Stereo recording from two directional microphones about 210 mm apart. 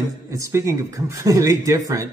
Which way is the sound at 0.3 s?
15° right (ahead or behind).